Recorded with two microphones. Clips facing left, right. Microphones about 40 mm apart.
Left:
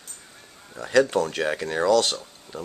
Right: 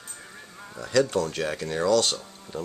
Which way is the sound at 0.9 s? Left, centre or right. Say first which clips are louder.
Left 3 dB; centre.